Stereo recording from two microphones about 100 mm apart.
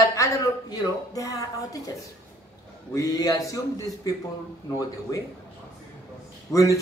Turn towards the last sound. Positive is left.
turn(degrees=30)  # may be behind; listen again after turning